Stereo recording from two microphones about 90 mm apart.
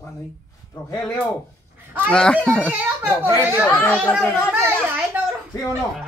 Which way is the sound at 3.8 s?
20° left (ahead or behind).